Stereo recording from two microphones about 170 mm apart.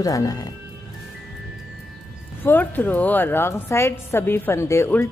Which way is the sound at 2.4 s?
10° left (ahead or behind).